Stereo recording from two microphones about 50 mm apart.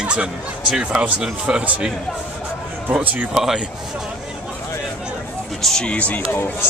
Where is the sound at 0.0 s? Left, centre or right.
Right.